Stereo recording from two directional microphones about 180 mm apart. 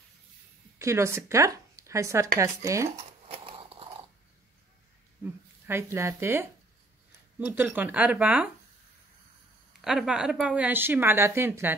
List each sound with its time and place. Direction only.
0.7 s speech: 15° right (ahead or behind)
3.3 s a sound: 30° right (ahead or behind)
5.2 s speech: 15° right (ahead or behind)
9.8 s speech: 5° right (ahead or behind)